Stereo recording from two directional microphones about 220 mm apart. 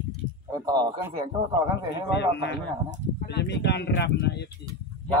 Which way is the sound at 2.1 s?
50° left (ahead or behind).